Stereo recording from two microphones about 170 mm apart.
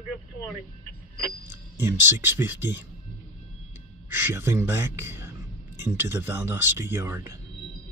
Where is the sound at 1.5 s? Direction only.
10° right (ahead or behind).